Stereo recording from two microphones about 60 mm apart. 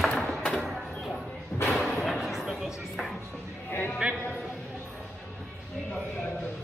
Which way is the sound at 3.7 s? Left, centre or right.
Left.